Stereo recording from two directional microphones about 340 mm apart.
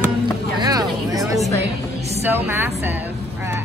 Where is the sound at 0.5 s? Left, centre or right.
Centre.